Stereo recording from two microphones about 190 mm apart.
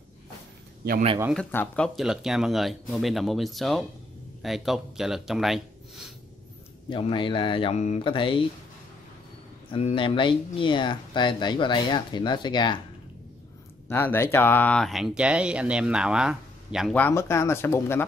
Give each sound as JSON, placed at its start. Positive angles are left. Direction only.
{"t": 1.3, "sound": "speech", "side_deg": 10}
{"t": 6.9, "sound": "speech", "side_deg": 25}
{"t": 9.7, "sound": "speech", "side_deg": 30}
{"t": 13.8, "sound": "speech", "side_deg": 10}
{"t": 16.9, "sound": "speech", "side_deg": 10}